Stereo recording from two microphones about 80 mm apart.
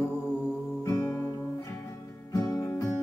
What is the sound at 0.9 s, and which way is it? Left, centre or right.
Music, left.